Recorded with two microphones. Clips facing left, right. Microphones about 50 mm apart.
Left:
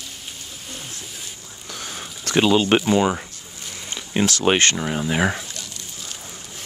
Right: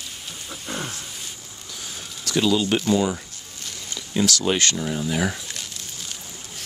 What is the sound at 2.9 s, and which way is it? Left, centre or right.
Speech, left.